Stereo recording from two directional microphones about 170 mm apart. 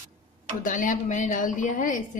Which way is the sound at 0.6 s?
50° left (ahead or behind).